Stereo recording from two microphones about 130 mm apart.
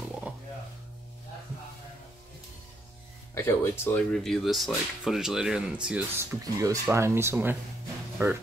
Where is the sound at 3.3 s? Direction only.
20° left (ahead or behind).